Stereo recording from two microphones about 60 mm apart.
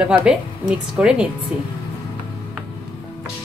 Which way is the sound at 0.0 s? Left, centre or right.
Centre.